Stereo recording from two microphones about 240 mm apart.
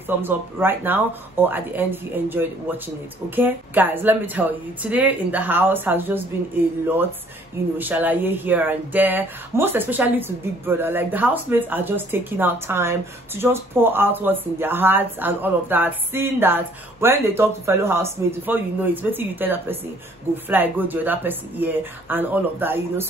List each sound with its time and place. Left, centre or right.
0.2 s speech: centre
7.7 s speech: centre